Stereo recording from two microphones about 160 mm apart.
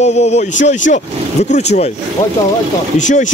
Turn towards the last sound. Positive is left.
turn(degrees=50)  # may be behind; listen again after turning